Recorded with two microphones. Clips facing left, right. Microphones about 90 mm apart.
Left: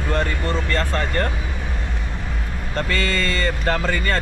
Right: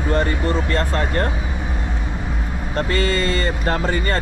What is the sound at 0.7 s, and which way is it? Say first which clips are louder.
Speech: right 2 dB; 20° right (ahead or behind).